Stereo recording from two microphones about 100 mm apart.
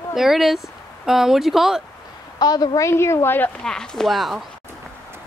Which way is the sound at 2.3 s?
40° left (ahead or behind).